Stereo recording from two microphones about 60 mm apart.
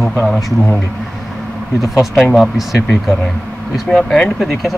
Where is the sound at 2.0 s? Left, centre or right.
Centre.